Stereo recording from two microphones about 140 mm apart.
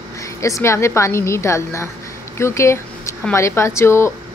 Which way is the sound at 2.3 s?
20° left (ahead or behind).